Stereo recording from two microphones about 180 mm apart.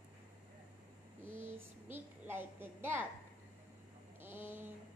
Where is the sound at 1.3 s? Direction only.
10° right (ahead or behind).